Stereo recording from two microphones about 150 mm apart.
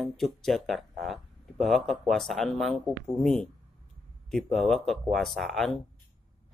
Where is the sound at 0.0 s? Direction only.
Centre (ahead or behind).